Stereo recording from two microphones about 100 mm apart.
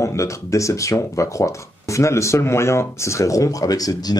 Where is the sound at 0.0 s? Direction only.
30° left (ahead or behind).